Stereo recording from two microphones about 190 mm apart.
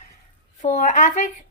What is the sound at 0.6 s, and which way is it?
Speech, 40° left (ahead or behind).